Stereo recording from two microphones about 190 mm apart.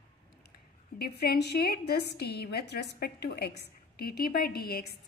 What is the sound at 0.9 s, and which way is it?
A woman's voice, 55° left (ahead or behind).